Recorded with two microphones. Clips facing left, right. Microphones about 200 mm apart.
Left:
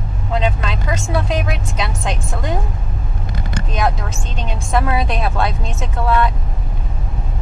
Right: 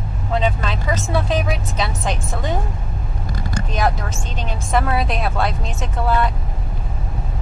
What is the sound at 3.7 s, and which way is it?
Vehicle, centre (ahead or behind).